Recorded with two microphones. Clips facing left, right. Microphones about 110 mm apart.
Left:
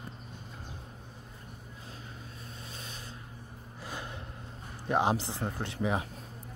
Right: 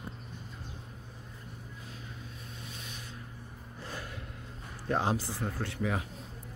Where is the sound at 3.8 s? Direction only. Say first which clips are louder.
Left 1 dB; 20° left (ahead or behind).